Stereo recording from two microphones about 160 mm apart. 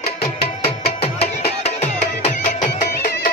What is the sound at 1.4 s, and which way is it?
Music, 40° left (ahead or behind).